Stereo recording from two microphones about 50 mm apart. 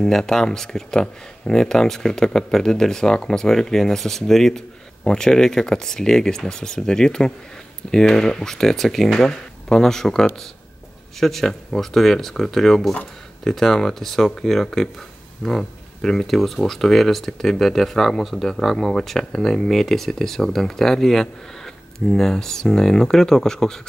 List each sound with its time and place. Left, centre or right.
0.0 s speech: centre